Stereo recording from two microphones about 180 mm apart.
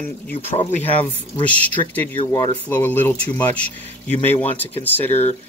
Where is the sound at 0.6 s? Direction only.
40° left (ahead or behind).